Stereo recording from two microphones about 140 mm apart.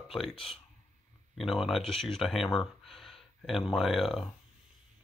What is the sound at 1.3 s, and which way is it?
Speech, centre (ahead or behind).